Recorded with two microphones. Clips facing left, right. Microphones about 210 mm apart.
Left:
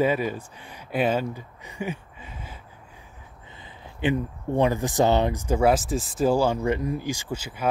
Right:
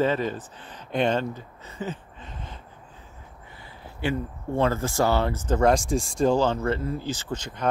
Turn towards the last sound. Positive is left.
turn(degrees=5)  # may be behind; listen again after turning